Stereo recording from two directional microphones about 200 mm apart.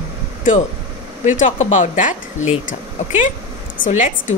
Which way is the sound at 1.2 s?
40° left (ahead or behind).